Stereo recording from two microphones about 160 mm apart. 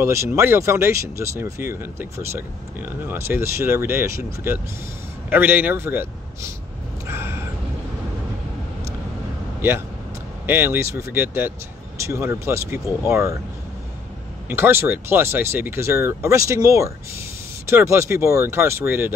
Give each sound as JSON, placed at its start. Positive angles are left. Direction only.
{"t": 0.0, "sound": "a man's voice", "side_deg": -15}
{"t": 7.1, "sound": "a sound", "side_deg": -15}
{"t": 9.6, "sound": "speech", "side_deg": -15}
{"t": 14.5, "sound": "speech", "side_deg": -15}